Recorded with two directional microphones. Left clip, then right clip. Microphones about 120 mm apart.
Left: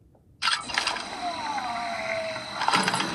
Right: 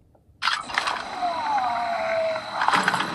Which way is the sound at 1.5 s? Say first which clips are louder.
Right 6 dB; 50° right (ahead or behind).